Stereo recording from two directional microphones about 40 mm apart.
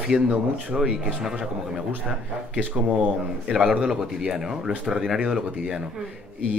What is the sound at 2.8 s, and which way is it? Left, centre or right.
Speech, right.